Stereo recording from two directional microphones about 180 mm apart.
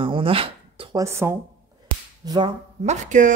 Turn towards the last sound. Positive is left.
turn(degrees=-45)  # may be behind; listen again after turning